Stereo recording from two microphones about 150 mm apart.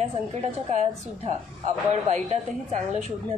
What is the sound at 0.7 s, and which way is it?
A woman's voice, 50° right (ahead or behind).